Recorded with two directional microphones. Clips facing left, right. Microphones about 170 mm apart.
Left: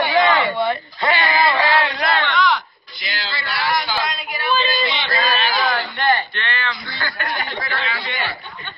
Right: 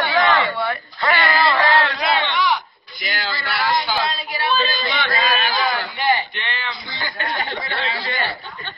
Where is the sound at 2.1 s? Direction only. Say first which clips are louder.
Left 2 dB; 15° right (ahead or behind).